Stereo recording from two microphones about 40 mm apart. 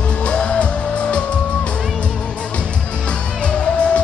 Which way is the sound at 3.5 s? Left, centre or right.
Left.